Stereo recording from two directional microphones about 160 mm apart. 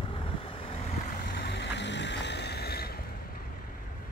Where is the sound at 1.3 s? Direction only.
90° left.